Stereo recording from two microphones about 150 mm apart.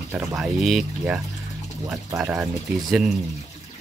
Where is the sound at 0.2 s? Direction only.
Centre (ahead or behind).